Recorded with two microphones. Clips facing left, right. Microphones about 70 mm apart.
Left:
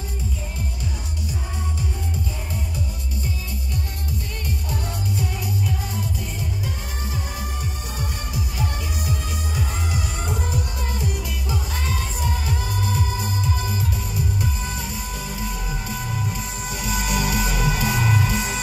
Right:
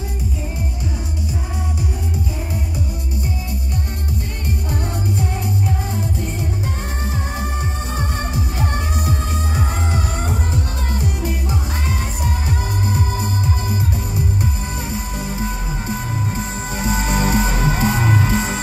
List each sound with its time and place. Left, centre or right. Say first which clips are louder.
5.2 s music: right 4 dB; right
7.3 s music: right 6 dB; right